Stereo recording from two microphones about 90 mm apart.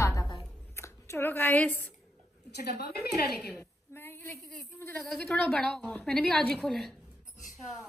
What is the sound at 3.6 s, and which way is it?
A woman's voice, 25° left (ahead or behind).